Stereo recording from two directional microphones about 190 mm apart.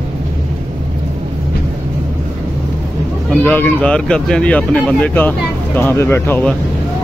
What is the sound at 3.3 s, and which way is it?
Speech, 10° left (ahead or behind).